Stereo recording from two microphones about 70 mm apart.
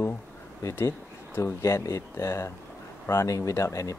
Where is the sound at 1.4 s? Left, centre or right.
Left.